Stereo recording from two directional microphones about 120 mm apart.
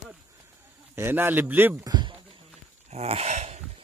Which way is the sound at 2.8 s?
60° right (ahead or behind).